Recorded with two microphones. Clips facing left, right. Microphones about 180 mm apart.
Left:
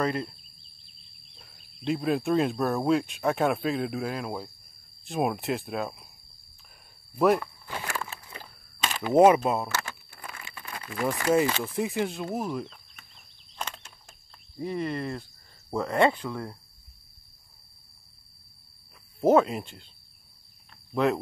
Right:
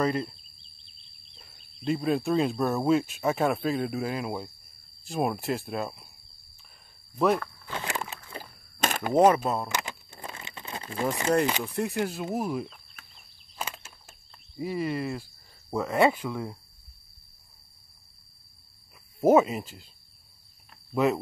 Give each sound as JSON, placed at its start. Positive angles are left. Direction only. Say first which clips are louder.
{"t": 0.0, "sound": "speech", "louder": "right 1 dB", "side_deg": 0}
{"t": 1.3, "sound": "speech", "louder": "even", "side_deg": 0}
{"t": 7.2, "sound": "speech", "louder": "left 2 dB", "side_deg": 10}
{"t": 7.8, "sound": "a sound", "louder": "right 1 dB", "side_deg": -20}
{"t": 8.3, "sound": "a sound", "louder": "right 4 dB", "side_deg": -45}
{"t": 9.1, "sound": "speech", "louder": "left 3 dB", "side_deg": 10}
{"t": 9.7, "sound": "crumpling", "louder": "right 1 dB", "side_deg": -15}
{"t": 11.6, "sound": "speech", "louder": "left 1 dB", "side_deg": 0}
{"t": 13.6, "sound": "a sound", "louder": "right 1 dB", "side_deg": -5}
{"t": 14.6, "sound": "speech", "louder": "right 1 dB", "side_deg": -5}
{"t": 19.2, "sound": "speech", "louder": "right 1 dB", "side_deg": -5}
{"t": 20.9, "sound": "speech", "louder": "even", "side_deg": -5}